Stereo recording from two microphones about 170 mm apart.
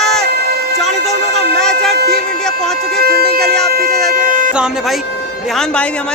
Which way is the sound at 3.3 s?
5° left (ahead or behind).